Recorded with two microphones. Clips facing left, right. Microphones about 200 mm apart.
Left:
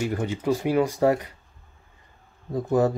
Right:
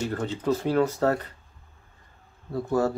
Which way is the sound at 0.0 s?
10° left (ahead or behind).